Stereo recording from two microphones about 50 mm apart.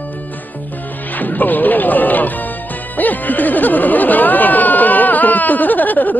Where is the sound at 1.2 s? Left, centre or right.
Left.